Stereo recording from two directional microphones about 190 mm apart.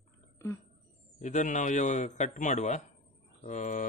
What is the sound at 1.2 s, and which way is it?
A man's voice, 40° left (ahead or behind).